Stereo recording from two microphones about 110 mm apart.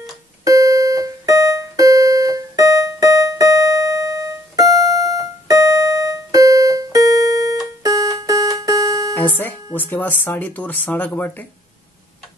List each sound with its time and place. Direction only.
0.4 s music: 35° right (ahead or behind)
9.1 s music: 15° left (ahead or behind)
9.8 s speech: 15° left (ahead or behind)